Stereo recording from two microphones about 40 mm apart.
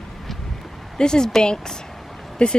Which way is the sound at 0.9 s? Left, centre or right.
Centre.